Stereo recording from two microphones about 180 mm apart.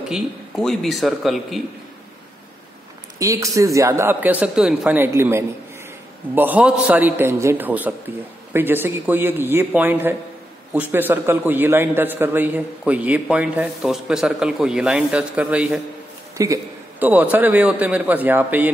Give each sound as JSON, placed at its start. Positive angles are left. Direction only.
{"t": 0.1, "sound": "a man's voice", "side_deg": 0}
{"t": 3.2, "sound": "a man's voice", "side_deg": -15}
{"t": 16.4, "sound": "a man's voice", "side_deg": -15}